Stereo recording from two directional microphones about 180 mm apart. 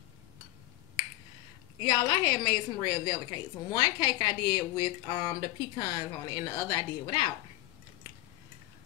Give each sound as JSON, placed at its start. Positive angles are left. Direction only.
{"t": 1.8, "sound": "a woman's voice", "side_deg": 20}